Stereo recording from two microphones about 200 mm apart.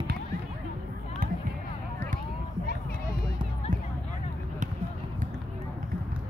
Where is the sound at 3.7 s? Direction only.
40° right (ahead or behind).